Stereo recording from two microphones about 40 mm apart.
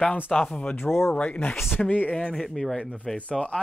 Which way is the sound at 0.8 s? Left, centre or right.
Left.